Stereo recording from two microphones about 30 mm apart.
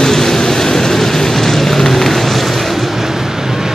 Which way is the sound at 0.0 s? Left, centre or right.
Centre.